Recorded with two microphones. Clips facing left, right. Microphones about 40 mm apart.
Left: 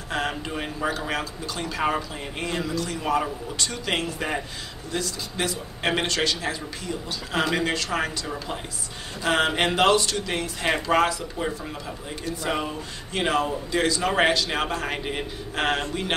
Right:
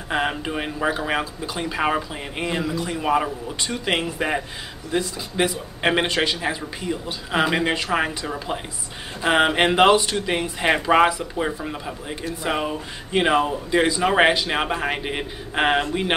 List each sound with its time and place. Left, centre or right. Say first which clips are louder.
0.1 s speech: right 4 dB; centre